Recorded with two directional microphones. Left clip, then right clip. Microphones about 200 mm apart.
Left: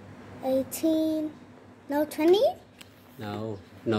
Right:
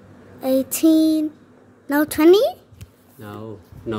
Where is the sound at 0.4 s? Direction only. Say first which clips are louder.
Right 8 dB; 45° right (ahead or behind).